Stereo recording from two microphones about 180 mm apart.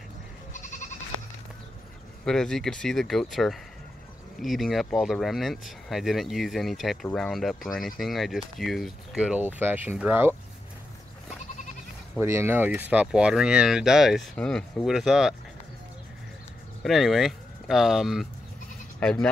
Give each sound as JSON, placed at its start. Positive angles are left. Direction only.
{"t": 0.5, "sound": "goat", "side_deg": 45}
{"t": 2.2, "sound": "speech", "side_deg": 5}
{"t": 12.2, "sound": "speech", "side_deg": -15}
{"t": 16.8, "sound": "speech", "side_deg": 0}